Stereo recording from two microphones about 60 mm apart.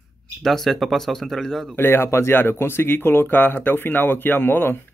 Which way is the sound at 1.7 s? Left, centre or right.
Left.